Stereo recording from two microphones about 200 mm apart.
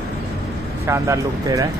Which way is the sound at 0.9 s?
15° right (ahead or behind).